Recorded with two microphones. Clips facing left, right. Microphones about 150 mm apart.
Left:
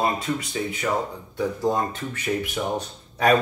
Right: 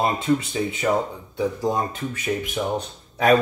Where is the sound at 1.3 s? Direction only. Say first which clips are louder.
Even; 15° right (ahead or behind).